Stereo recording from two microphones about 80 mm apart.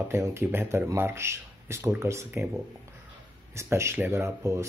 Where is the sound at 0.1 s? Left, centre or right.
Right.